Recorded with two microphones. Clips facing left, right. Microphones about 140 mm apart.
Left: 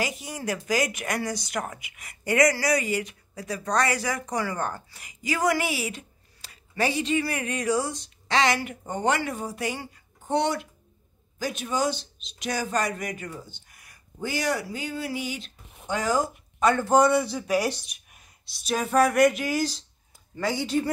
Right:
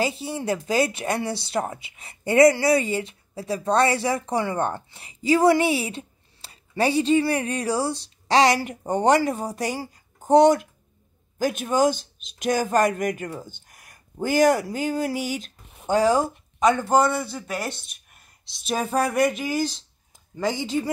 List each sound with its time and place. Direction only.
0.0 s a man's voice: 30° right (ahead or behind)
16.5 s speech: 15° right (ahead or behind)
17.0 s speech: centre (ahead or behind)
20.6 s speech: 20° right (ahead or behind)